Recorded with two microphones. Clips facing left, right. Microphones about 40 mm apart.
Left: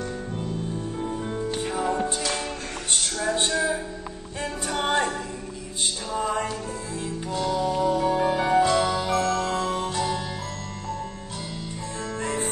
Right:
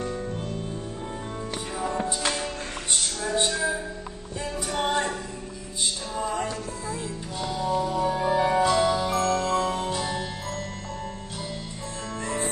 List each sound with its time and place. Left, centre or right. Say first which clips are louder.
1.7 s music: left 3 dB; left
3.3 s a sound: right 2 dB; left
4.8 s music: left 3 dB; left
6.1 s music: left 3 dB; left
7.3 s music: left 2 dB; centre